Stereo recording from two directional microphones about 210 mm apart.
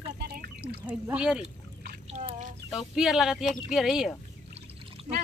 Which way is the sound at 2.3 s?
35° right (ahead or behind).